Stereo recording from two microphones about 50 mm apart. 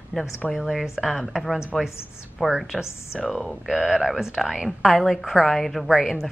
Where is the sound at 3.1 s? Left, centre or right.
Centre.